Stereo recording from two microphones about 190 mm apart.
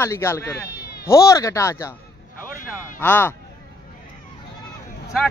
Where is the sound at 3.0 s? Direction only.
10° left (ahead or behind).